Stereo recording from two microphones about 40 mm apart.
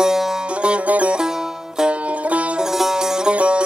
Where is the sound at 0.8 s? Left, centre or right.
Right.